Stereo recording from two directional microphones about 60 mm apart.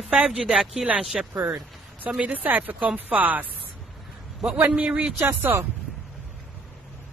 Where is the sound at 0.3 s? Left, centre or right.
Centre.